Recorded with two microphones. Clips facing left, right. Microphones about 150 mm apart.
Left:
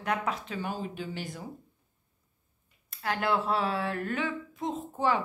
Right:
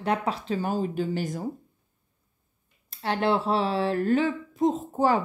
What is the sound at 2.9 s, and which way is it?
Speech, 30° right (ahead or behind).